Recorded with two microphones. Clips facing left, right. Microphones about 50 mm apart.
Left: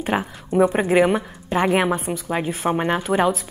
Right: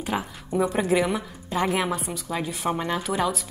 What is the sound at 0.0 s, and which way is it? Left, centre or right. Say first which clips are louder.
A woman's voice: left 5 dB; left.